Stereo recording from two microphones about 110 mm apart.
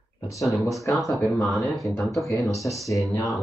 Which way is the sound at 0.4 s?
Centre (ahead or behind).